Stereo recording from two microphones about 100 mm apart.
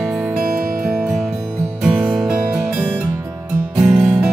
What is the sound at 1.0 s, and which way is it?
Music, centre (ahead or behind).